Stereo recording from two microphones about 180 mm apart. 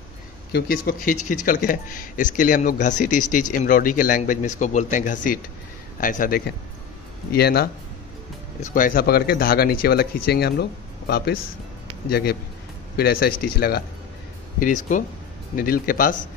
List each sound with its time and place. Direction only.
0.5 s speech: 60° left (ahead or behind)
8.6 s speech: 50° left (ahead or behind)
14.6 s speech: 45° left (ahead or behind)